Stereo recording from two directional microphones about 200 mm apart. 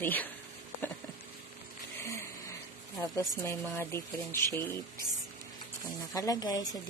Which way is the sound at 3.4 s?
10° left (ahead or behind).